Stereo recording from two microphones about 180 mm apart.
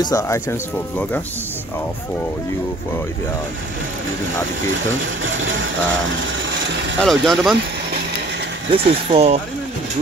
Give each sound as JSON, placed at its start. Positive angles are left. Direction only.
{"t": 0.0, "sound": "speech", "side_deg": 20}
{"t": 7.0, "sound": "speech", "side_deg": 0}
{"t": 8.7, "sound": "speech", "side_deg": -35}